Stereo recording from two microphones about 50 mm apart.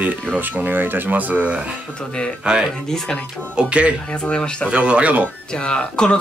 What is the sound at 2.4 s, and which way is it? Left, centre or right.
Speech, centre.